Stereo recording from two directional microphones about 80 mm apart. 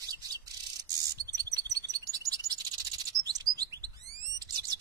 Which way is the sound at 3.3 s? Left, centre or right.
Right.